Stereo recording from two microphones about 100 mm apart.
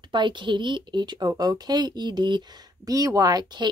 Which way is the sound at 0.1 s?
50° right (ahead or behind).